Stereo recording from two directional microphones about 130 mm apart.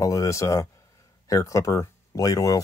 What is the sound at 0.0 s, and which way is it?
Speech, 25° left (ahead or behind).